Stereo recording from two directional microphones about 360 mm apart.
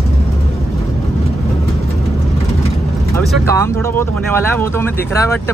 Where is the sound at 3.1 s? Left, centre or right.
Centre.